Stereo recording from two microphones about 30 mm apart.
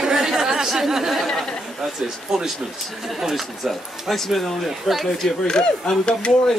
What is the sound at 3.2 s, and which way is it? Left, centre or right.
Speech, centre.